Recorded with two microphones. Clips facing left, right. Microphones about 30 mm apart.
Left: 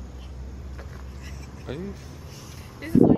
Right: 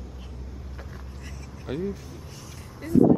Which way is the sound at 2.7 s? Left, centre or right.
Left.